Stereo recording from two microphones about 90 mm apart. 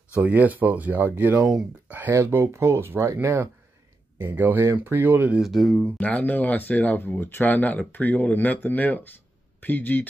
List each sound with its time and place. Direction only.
0.1 s speech: 15° right (ahead or behind)
1.9 s a sound: 20° right (ahead or behind)
2.1 s speech: 30° right (ahead or behind)
5.4 s speech: centre (ahead or behind)
5.9 s speech: 15° left (ahead or behind)